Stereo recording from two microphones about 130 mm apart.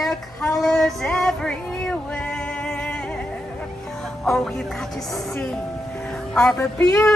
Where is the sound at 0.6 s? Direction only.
5° left (ahead or behind).